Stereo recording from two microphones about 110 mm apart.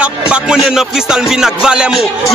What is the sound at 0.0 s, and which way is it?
A man's voice, 10° right (ahead or behind).